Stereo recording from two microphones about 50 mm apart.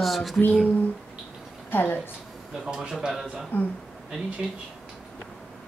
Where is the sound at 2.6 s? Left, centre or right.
Centre.